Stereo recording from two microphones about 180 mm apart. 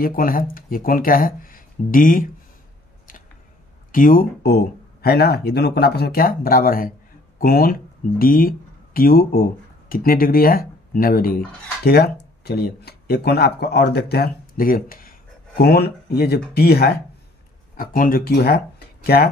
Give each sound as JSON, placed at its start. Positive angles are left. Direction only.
{"t": 0.0, "sound": "speech", "side_deg": 50}
{"t": 3.9, "sound": "speech", "side_deg": 50}